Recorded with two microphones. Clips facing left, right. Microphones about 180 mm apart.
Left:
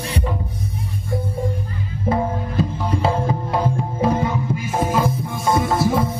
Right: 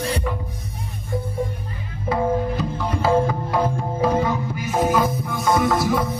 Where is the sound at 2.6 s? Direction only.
30° left (ahead or behind).